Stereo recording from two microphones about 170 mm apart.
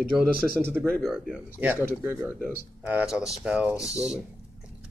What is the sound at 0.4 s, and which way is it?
Speech, centre (ahead or behind).